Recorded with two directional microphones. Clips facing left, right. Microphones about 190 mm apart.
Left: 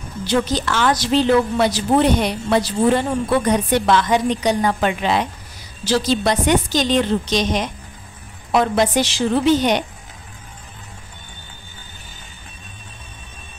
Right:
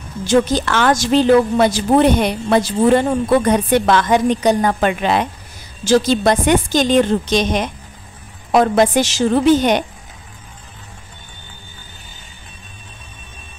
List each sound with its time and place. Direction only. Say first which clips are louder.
0.2 s a woman's voice: right 5 dB; 45° right (ahead or behind)